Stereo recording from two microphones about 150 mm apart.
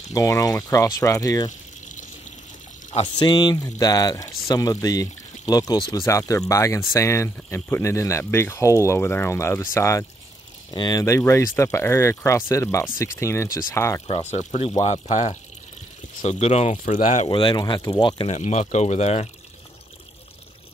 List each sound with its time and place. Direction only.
0.1 s speech: 20° left (ahead or behind)
1.9 s water: 55° left (ahead or behind)
3.2 s speech: 30° left (ahead or behind)
14.3 s speech: 50° left (ahead or behind)
17.3 s speech: 35° left (ahead or behind)
18.3 s speech: 50° left (ahead or behind)